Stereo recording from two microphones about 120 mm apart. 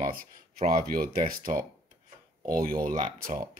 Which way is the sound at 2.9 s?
70° right (ahead or behind).